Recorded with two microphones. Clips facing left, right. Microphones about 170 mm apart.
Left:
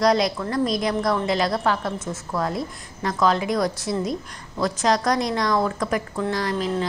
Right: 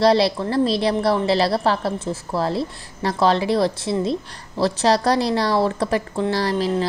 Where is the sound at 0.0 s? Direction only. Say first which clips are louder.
Right 3 dB; 30° right (ahead or behind).